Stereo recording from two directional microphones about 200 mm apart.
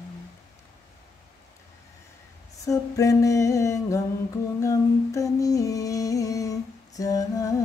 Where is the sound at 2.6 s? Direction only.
15° left (ahead or behind).